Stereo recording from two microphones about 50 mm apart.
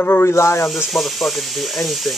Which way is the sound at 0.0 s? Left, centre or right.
Left.